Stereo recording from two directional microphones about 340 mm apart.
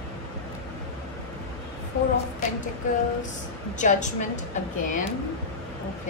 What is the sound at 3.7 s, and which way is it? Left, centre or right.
A woman's voice, left.